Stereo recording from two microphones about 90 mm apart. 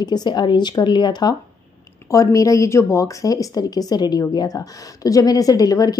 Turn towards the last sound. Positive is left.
turn(degrees=45)  # may be behind; listen again after turning